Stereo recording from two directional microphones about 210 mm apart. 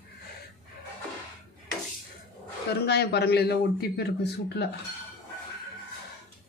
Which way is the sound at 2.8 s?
50° left (ahead or behind).